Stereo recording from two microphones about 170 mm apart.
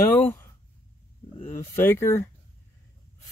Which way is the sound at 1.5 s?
15° left (ahead or behind).